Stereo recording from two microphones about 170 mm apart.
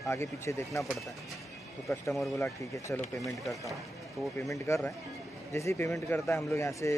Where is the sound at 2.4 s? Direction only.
15° left (ahead or behind).